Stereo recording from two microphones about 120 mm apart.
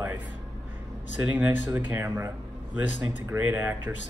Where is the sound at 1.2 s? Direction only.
15° right (ahead or behind).